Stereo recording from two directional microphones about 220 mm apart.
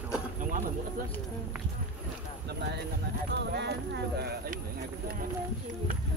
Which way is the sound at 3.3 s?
50° right (ahead or behind).